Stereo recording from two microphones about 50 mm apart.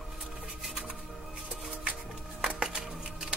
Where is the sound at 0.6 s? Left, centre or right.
Centre.